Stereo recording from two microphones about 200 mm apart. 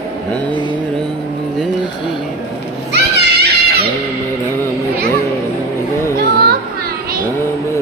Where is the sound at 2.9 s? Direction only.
55° right (ahead or behind).